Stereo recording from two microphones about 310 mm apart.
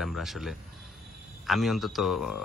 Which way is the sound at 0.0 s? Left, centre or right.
Centre.